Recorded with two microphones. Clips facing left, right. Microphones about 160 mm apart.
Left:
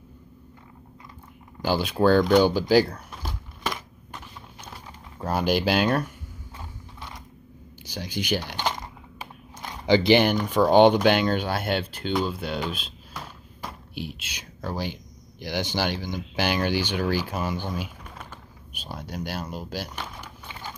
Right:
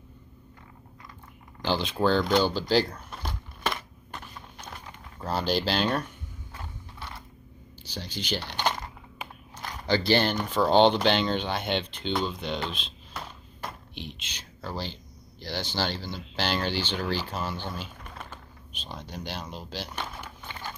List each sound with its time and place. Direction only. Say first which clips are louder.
1.6 s speech: left 4 dB; 10° left (ahead or behind)
2.3 s a sound: left 5 dB; 10° left (ahead or behind)
7.8 s speech: left 5 dB; 15° left (ahead or behind)
9.6 s biting: left 6 dB; 15° left (ahead or behind)
10.4 s speech: left 2 dB; 10° left (ahead or behind)
13.1 s a sound: even; centre (ahead or behind)
15.4 s speech: left 4 dB; 15° left (ahead or behind)